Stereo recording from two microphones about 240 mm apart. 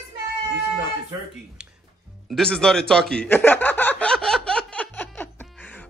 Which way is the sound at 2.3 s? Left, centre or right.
Centre.